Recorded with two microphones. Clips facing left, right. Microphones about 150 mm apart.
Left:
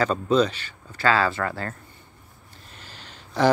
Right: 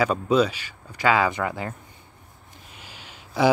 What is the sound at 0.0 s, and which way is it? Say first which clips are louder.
Speech: even; 10° right (ahead or behind).